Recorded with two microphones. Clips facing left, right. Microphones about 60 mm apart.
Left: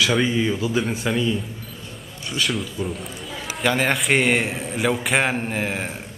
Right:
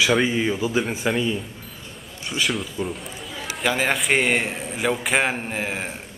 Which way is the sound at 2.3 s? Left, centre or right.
Centre.